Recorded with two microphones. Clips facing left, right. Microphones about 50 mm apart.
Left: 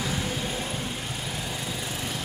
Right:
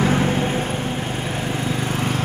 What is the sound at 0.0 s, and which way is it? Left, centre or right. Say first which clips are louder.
Vehicle: right 11 dB; right.